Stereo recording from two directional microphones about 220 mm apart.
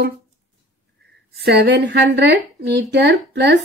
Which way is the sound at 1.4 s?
50° right (ahead or behind).